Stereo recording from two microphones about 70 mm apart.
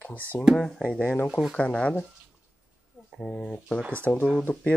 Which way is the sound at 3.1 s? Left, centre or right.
Centre.